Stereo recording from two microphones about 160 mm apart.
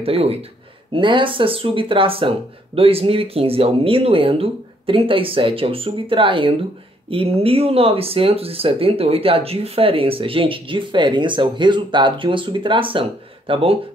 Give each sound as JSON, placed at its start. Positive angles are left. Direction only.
{"t": 0.0, "sound": "speech", "side_deg": -40}